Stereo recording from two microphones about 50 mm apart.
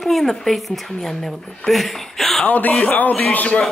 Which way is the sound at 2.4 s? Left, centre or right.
Left.